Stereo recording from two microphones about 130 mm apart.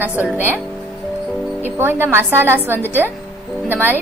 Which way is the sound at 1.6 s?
15° right (ahead or behind).